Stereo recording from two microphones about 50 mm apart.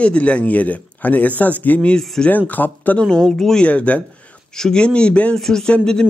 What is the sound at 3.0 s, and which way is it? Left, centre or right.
Speech, centre.